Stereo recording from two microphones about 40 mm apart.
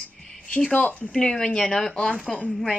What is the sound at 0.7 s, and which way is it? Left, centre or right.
Speech, left.